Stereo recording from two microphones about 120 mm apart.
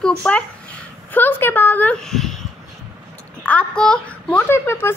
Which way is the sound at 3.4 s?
10° left (ahead or behind).